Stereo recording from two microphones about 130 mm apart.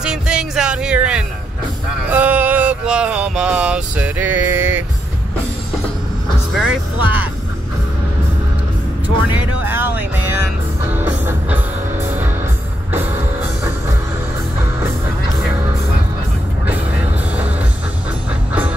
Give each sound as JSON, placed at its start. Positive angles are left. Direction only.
{"t": 0.0, "sound": "music", "side_deg": -5}
{"t": 2.0, "sound": "a sound", "side_deg": -10}
{"t": 6.5, "sound": "music", "side_deg": -5}
{"t": 9.7, "sound": "music", "side_deg": -15}